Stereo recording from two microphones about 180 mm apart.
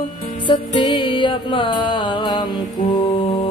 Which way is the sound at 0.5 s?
25° left (ahead or behind).